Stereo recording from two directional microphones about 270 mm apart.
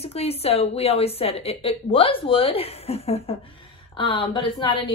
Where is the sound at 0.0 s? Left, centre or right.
Left.